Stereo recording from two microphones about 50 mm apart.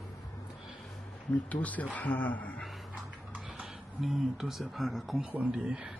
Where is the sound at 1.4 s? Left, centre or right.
Left.